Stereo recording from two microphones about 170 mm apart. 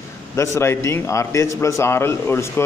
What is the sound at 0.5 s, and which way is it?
A man's voice, 15° left (ahead or behind).